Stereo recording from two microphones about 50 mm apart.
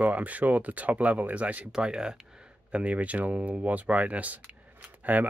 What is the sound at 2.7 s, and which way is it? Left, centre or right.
Speech, right.